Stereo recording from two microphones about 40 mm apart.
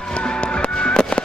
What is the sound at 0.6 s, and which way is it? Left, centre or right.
Music, left.